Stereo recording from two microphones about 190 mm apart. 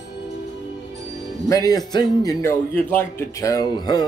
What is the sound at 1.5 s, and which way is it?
Speech, 20° left (ahead or behind).